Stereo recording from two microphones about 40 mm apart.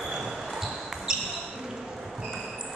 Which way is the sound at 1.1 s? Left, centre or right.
Centre.